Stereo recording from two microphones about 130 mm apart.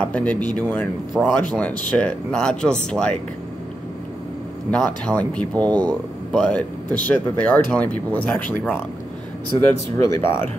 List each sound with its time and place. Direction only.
0.0 s speech: 10° left (ahead or behind)
4.6 s speech: 5° left (ahead or behind); by 10.2 s 20° left (ahead or behind)